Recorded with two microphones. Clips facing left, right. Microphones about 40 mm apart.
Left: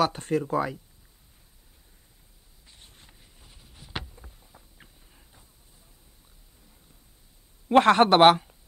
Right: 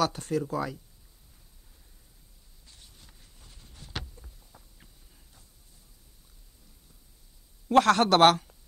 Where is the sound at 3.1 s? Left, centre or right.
Centre.